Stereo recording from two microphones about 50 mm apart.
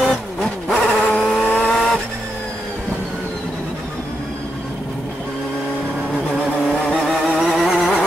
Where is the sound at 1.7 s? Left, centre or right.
Centre.